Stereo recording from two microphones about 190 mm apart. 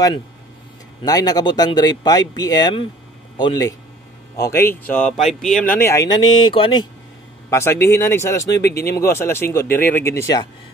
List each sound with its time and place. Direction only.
1.0 s speech: 20° left (ahead or behind)
7.4 s speech: 15° left (ahead or behind)
8.6 s speech: 55° left (ahead or behind)
8.9 s speech: 15° left (ahead or behind)